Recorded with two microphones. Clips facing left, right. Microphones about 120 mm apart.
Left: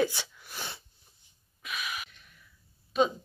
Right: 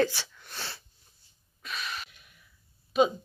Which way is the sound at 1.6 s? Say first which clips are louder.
Even; 10° left (ahead or behind).